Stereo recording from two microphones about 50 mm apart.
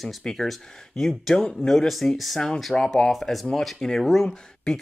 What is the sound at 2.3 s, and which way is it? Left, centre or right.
Speech, centre.